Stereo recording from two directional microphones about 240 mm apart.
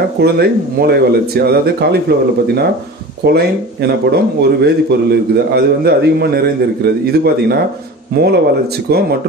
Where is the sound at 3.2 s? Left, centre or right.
Right.